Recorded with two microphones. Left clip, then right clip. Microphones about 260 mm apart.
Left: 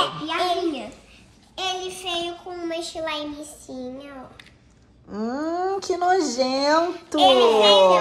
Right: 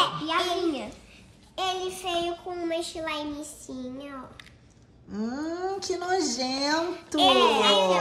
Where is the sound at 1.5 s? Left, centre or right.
Centre.